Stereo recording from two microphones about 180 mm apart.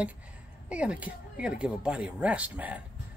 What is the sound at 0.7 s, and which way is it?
Speech, 5° right (ahead or behind).